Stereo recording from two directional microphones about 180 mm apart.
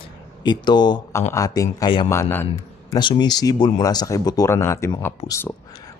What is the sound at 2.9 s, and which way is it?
Speech, 25° left (ahead or behind).